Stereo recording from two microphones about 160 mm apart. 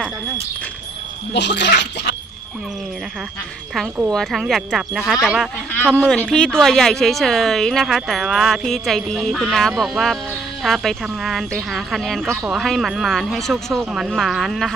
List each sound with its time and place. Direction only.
1.3 s speech: 90° left
4.1 s speech: centre (ahead or behind)